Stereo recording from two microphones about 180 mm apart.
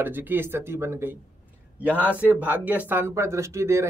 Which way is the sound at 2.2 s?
10° right (ahead or behind).